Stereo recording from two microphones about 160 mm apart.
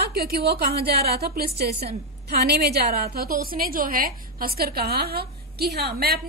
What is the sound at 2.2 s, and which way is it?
A woman's voice, 85° right.